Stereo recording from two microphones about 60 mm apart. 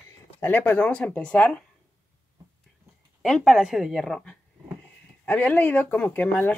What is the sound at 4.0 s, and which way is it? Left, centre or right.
Speech, centre.